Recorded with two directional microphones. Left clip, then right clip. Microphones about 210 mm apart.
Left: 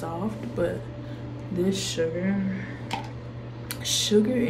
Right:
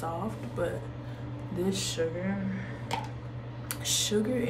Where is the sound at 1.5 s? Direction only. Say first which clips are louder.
Left 5 dB; 20° right (ahead or behind).